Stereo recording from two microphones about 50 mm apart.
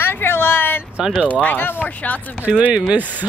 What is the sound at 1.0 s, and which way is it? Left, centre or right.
Speech, centre.